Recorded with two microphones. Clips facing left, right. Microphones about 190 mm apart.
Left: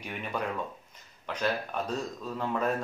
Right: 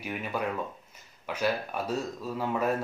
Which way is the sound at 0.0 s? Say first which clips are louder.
Right 2 dB; 5° right (ahead or behind).